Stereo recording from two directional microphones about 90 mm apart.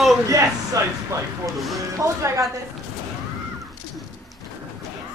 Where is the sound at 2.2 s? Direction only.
35° right (ahead or behind).